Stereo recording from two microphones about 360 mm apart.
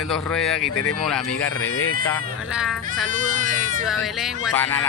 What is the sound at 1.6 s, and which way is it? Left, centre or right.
Speech, left.